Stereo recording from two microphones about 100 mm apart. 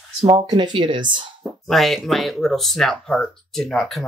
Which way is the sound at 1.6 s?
Centre (ahead or behind).